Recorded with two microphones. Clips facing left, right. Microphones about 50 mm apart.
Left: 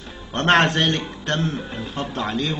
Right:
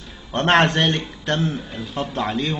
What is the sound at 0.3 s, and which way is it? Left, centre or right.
A man's voice, centre.